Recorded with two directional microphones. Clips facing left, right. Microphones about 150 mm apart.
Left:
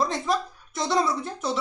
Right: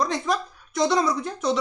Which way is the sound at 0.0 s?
5° left (ahead or behind).